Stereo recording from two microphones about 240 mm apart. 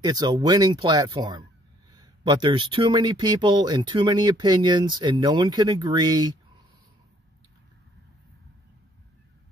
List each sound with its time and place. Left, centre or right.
0.0 s speech: centre